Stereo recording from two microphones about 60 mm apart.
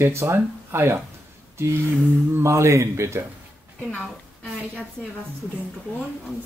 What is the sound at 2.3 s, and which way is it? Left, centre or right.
Speech, right.